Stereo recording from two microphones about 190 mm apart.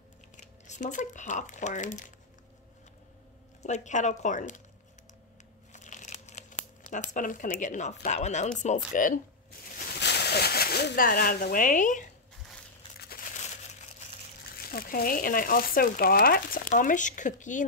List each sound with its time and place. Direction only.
0.4 s speech: 40° left (ahead or behind)
3.6 s speech: 40° left (ahead or behind)
5.7 s crumpling: 40° left (ahead or behind)
8.5 s speech: 40° left (ahead or behind)
9.9 s speech: 60° left (ahead or behind); by 12.1 s 40° left (ahead or behind)
14.7 s speech: 50° left (ahead or behind)